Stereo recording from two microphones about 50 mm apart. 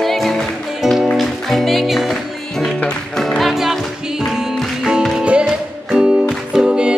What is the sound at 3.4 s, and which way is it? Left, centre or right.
Music, centre.